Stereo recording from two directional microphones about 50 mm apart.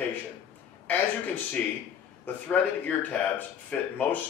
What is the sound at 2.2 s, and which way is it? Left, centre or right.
A man's voice, left.